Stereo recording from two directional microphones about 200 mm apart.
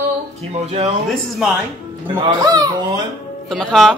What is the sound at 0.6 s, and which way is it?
Speech, 35° right (ahead or behind).